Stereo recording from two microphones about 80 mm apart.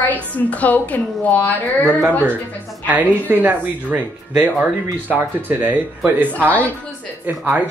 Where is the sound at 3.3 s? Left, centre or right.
Right.